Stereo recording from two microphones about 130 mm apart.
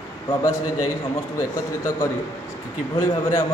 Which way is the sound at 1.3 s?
25° left (ahead or behind).